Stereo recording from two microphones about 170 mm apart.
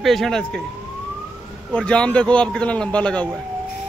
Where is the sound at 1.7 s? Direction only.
5° left (ahead or behind).